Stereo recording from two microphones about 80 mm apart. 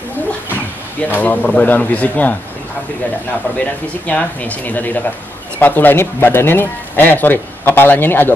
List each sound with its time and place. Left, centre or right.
1.1 s speech: left
4.1 s speech: centre